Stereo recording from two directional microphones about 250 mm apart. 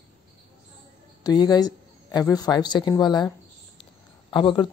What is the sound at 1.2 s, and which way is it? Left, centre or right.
Speech, centre.